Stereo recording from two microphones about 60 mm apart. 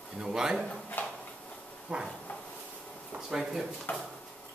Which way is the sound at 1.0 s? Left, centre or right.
Left.